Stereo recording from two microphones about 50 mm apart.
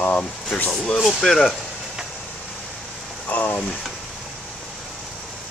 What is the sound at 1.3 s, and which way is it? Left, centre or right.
Speech, centre.